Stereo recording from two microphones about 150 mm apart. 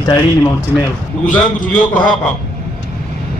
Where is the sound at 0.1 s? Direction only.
25° left (ahead or behind).